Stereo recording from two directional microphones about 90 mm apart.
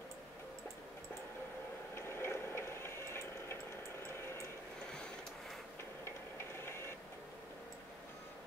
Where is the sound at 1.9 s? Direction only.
25° left (ahead or behind).